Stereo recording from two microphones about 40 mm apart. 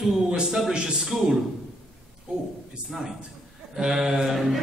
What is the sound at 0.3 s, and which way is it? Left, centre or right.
Speech, centre.